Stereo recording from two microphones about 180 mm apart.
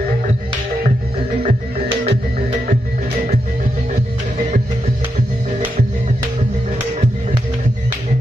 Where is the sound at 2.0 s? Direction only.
30° right (ahead or behind).